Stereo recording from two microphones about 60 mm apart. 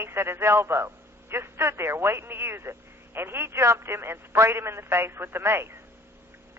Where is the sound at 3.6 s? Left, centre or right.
Right.